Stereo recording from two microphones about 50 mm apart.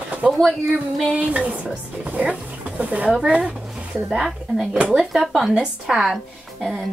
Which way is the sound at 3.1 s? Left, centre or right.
Centre.